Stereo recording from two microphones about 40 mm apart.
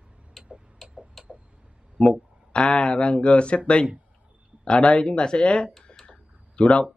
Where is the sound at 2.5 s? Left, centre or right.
Left.